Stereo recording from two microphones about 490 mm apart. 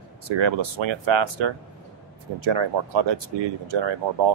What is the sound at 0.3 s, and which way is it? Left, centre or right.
Speech, right.